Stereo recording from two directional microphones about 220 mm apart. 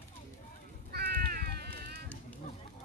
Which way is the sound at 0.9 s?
45° right (ahead or behind).